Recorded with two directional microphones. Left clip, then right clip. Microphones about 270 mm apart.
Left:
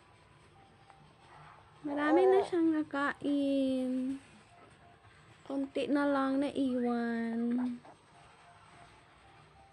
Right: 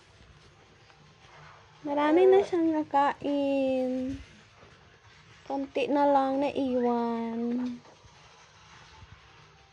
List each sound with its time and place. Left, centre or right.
1.9 s speech: centre
5.5 s speech: centre